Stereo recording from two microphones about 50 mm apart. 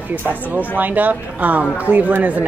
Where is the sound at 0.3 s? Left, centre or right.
Right.